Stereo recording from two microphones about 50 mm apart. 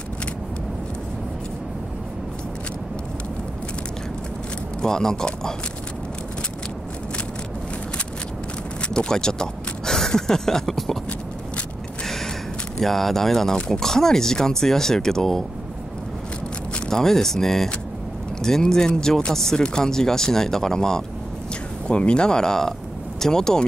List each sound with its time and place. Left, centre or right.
4.8 s speech: centre
8.8 s speech: centre
12.7 s speech: centre
16.7 s speech: centre